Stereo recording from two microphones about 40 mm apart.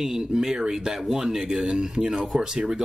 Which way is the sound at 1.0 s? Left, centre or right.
Centre.